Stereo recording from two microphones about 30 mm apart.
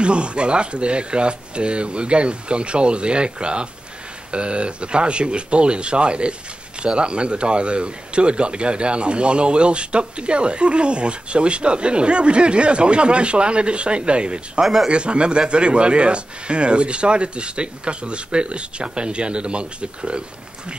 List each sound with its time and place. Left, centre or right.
0.0 s a man's voice: right
14.6 s speech: centre
14.9 s a man's voice: right